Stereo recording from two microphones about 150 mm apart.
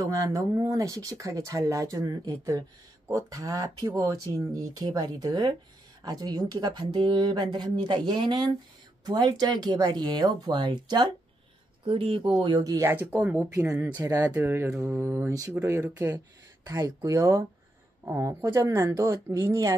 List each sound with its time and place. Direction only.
0.0 s speech: 25° right (ahead or behind)